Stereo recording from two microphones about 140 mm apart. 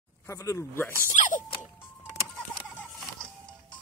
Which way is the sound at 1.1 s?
65° left (ahead or behind).